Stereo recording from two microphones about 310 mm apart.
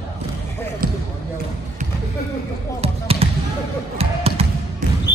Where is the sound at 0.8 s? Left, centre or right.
Right.